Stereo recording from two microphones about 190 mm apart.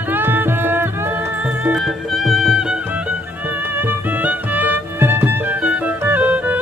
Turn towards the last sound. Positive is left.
turn(degrees=-10)  # may be behind; listen again after turning